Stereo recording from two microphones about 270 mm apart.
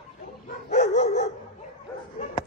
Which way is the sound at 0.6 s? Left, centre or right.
Left.